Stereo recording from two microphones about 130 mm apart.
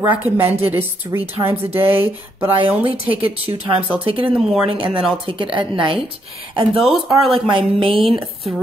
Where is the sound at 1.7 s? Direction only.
15° right (ahead or behind).